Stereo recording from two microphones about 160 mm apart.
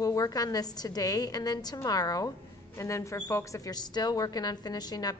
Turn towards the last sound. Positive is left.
turn(degrees=25)  # may be behind; listen again after turning